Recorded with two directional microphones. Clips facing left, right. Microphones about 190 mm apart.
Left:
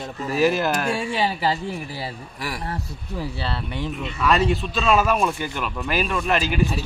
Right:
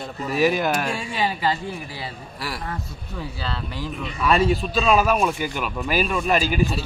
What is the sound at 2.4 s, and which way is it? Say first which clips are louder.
Speech: even; 15° left (ahead or behind).